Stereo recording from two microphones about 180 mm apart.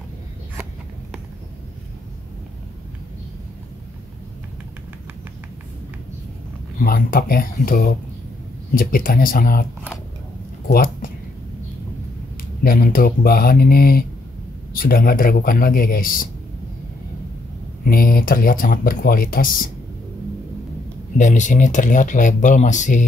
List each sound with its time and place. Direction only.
6.8 s speech: 55° left (ahead or behind)
10.7 s speech: 55° left (ahead or behind)
12.6 s speech: 55° left (ahead or behind)
17.8 s speech: 55° left (ahead or behind)
21.2 s speech: 45° left (ahead or behind)